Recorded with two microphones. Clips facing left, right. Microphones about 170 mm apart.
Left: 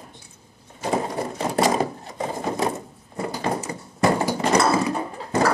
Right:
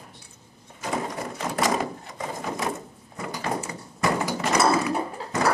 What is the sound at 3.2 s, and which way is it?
Door, 30° left (ahead or behind).